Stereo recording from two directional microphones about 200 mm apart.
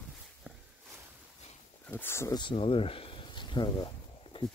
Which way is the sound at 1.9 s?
10° left (ahead or behind).